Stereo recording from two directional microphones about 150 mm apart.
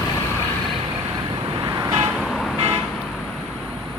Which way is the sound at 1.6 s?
25° right (ahead or behind).